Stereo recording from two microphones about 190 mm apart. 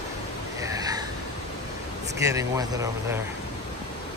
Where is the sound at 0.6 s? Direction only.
20° right (ahead or behind).